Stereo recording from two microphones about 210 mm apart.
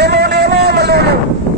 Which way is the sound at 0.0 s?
50° right (ahead or behind).